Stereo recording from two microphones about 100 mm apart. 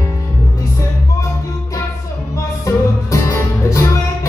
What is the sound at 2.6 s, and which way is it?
Music, 35° left (ahead or behind).